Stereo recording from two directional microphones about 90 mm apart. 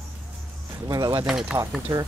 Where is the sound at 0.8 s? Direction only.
45° right (ahead or behind).